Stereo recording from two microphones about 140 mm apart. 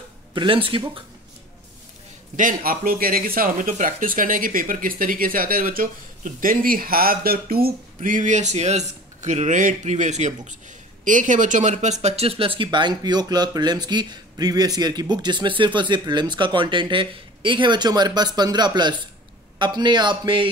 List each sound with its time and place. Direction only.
0.3 s speech: 35° right (ahead or behind)
2.3 s speech: 80° right; by 20.4 s 35° right (ahead or behind)